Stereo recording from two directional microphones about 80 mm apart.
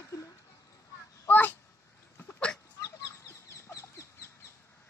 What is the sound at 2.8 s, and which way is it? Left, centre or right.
Chicken, left.